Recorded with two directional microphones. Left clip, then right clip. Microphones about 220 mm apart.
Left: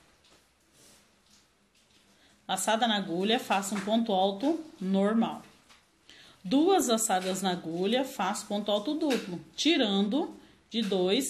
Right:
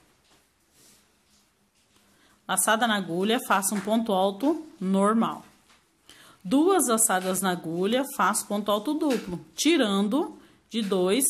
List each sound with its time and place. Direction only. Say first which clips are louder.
2.4 s a woman's voice: right 4 dB; 25° right (ahead or behind)